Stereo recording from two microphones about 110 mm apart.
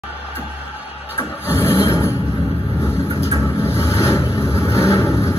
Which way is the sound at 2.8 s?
25° left (ahead or behind).